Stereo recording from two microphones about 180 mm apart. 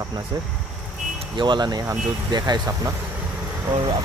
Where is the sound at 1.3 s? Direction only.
25° right (ahead or behind).